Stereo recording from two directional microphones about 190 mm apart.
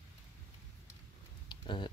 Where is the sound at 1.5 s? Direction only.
25° left (ahead or behind).